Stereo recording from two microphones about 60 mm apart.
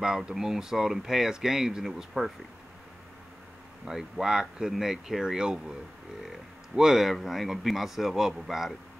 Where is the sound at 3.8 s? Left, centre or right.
Centre.